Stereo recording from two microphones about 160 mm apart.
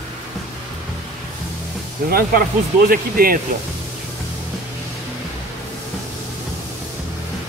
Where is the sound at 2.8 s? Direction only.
65° right (ahead or behind).